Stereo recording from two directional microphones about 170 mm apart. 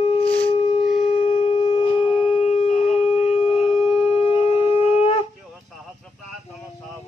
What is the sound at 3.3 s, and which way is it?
Shofar, 35° left (ahead or behind).